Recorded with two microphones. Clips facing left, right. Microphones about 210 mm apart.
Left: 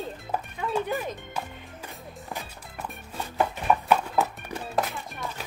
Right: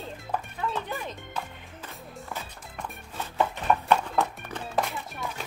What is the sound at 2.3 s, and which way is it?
Music, 15° left (ahead or behind).